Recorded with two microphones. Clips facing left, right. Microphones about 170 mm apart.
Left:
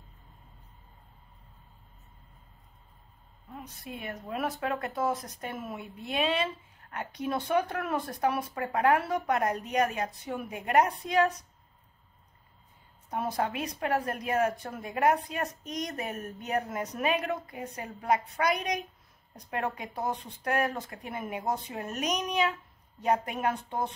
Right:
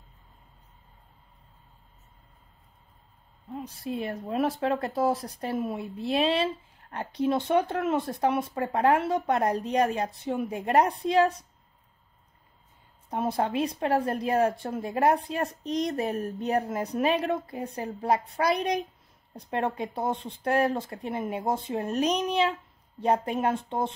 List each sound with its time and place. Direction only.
3.6 s speech: 30° right (ahead or behind)
13.1 s speech: 25° right (ahead or behind)